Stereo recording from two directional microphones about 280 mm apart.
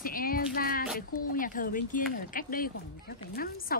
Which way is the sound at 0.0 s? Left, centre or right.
Left.